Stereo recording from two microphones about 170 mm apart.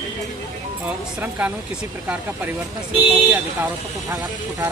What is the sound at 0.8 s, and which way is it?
Speech, 10° right (ahead or behind).